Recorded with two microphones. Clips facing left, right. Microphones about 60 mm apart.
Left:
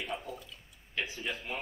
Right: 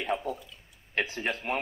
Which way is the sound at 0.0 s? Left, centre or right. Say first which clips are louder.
Right 8 dB; right.